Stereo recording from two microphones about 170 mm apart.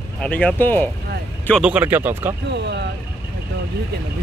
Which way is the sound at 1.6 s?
5° right (ahead or behind).